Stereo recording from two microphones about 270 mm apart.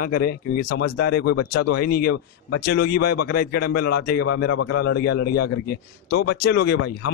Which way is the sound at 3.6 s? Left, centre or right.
Left.